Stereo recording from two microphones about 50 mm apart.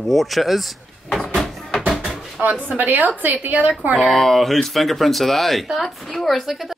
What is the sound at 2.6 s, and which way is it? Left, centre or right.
A woman's voice, right.